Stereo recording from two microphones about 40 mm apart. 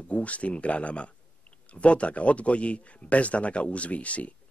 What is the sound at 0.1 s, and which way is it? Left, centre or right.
Speech, left.